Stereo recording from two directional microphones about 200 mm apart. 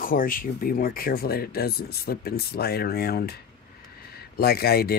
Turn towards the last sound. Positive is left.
turn(degrees=50)  # may be behind; listen again after turning